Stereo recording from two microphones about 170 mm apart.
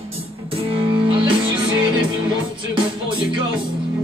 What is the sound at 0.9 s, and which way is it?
Music, 30° right (ahead or behind).